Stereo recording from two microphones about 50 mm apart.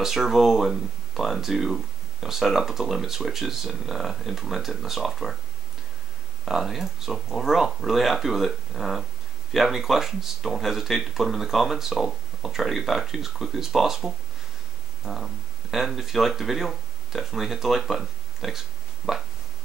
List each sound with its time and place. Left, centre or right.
0.0 s speech: centre
6.5 s speech: centre
19.0 s a sound: centre